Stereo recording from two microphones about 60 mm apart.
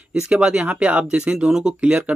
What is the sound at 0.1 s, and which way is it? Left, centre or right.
Speech, centre.